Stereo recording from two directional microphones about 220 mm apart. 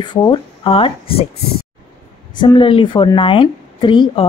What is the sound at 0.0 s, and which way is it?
Speech, 20° left (ahead or behind).